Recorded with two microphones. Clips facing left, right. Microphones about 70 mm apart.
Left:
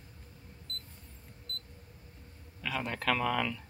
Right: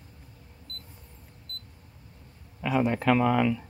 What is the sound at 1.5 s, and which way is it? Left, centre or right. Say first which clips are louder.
Camera: left 1 dB; centre.